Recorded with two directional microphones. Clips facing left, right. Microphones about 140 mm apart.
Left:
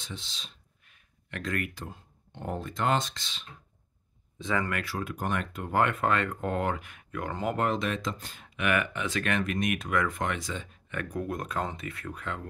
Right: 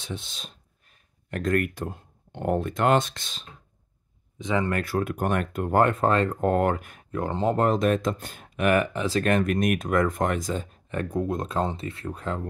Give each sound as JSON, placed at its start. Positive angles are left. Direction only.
{"t": 0.0, "sound": "speech", "side_deg": -55}
{"t": 4.4, "sound": "speech", "side_deg": -20}
{"t": 4.8, "sound": "speech", "side_deg": -55}